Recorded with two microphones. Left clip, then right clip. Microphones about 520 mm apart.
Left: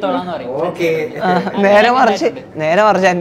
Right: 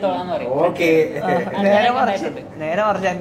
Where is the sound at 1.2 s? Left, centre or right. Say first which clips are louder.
Left 5 dB; left.